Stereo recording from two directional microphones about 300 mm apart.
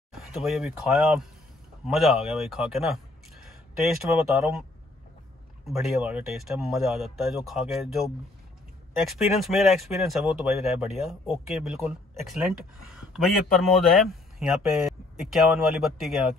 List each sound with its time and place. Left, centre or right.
0.1 s speech: centre
4.1 s speech: centre
5.7 s speech: centre
12.3 s speech: centre